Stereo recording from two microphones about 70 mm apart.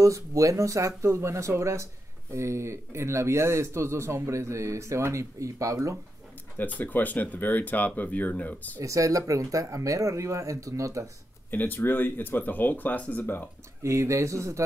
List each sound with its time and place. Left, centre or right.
0.0 s speech: right
6.6 s speech: left
8.8 s speech: right
11.5 s speech: left
13.8 s speech: right